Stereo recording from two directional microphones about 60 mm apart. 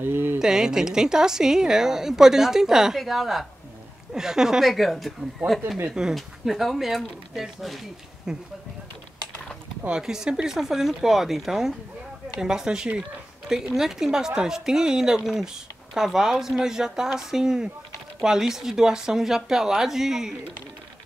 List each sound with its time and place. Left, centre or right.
0.0 s a sound: right
0.4 s a woman's voice: centre
5.9 s a woman's voice: centre
9.8 s a woman's voice: centre